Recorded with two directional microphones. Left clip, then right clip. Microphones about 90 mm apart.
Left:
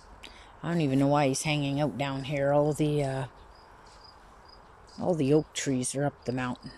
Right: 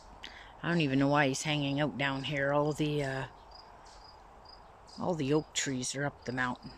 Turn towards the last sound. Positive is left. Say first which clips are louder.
# left 2 dB
turn(degrees=5)  # may be behind; listen again after turning